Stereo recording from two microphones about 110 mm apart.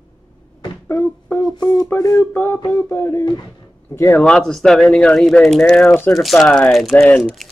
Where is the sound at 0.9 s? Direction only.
20° left (ahead or behind).